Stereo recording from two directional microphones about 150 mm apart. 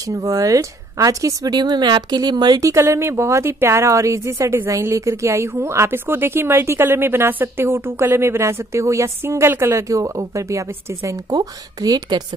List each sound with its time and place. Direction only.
0.1 s a woman's voice: 25° right (ahead or behind)